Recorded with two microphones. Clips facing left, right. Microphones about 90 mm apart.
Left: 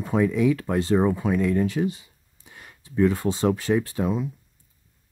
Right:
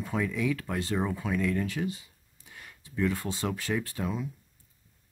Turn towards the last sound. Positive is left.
turn(degrees=20)  # may be behind; listen again after turning